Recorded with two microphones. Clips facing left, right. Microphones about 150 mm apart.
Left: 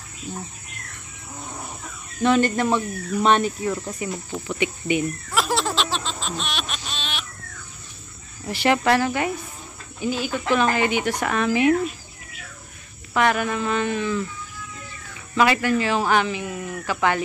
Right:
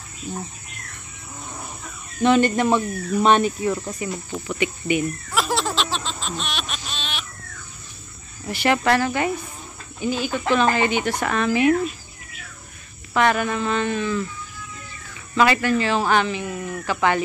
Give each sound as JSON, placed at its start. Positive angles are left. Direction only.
{"t": 2.4, "sound": "speech", "side_deg": -20}
{"t": 2.7, "sound": "speech", "side_deg": -5}
{"t": 3.4, "sound": "cricket", "side_deg": -10}
{"t": 4.0, "sound": "speech", "side_deg": 10}
{"t": 4.5, "sound": "cricket", "side_deg": 25}
{"t": 5.3, "sound": "a sound", "side_deg": 0}
{"t": 8.5, "sound": "speech", "side_deg": 25}
{"t": 8.7, "sound": "speech", "side_deg": 15}
{"t": 13.1, "sound": "speech", "side_deg": 5}
{"t": 15.3, "sound": "speech", "side_deg": 10}